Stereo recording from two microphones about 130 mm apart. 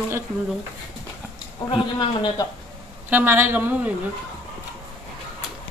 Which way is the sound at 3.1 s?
15° right (ahead or behind).